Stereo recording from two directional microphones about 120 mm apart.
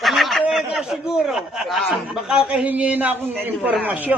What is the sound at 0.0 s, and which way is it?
Speech, centre (ahead or behind).